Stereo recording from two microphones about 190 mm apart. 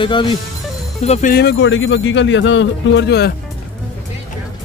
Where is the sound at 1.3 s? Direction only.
70° left (ahead or behind).